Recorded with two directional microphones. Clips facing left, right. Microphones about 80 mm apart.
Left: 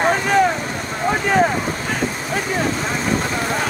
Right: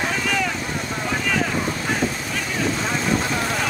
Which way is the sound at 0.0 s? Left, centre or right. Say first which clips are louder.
Left 8 dB; left.